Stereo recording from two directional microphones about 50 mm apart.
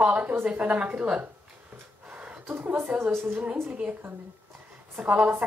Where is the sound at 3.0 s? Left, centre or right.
Right.